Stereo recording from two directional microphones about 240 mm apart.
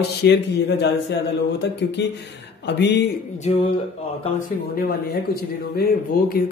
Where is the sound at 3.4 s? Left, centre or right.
Left.